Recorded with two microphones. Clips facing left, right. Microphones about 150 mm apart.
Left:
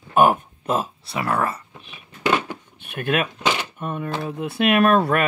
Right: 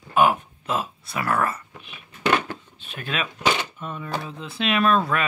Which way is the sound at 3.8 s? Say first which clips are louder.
Left 4 dB; 55° left (ahead or behind).